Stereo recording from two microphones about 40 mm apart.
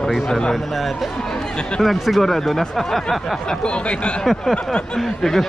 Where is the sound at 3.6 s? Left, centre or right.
Left.